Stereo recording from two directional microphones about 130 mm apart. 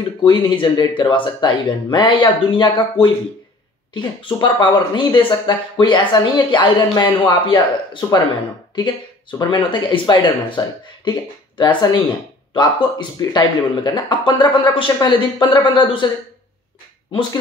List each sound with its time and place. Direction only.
0.2 s speech: 40° left (ahead or behind)
9.4 s speech: 35° left (ahead or behind)